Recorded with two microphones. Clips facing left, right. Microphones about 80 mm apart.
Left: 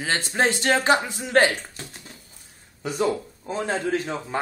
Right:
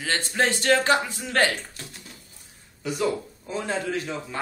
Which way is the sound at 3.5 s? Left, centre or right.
Left.